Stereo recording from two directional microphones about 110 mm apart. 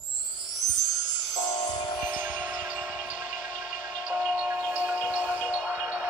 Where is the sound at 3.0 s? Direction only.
10° right (ahead or behind).